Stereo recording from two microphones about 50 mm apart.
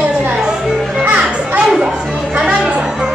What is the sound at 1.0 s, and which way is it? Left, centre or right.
Children playing, right.